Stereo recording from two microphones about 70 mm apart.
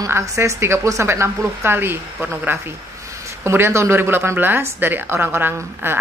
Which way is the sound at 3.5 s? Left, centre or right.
Right.